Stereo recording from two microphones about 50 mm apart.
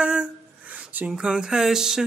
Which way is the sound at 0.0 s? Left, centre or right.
Right.